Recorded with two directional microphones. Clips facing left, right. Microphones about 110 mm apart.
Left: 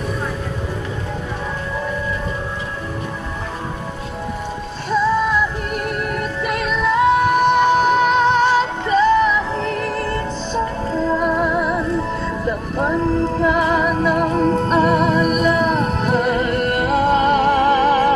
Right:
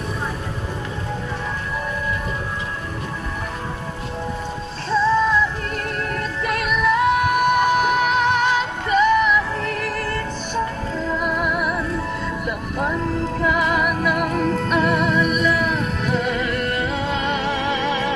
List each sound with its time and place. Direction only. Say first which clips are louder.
5.9 s music: left 3 dB; 15° left (ahead or behind)
6.6 s music: left 2 dB; 25° left (ahead or behind)
10.9 s music: left 5 dB; 35° left (ahead or behind)